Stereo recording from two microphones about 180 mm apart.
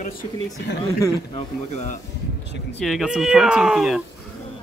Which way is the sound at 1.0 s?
25° left (ahead or behind).